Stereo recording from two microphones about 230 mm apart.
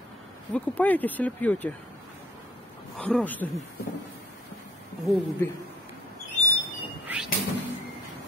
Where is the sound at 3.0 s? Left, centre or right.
Centre.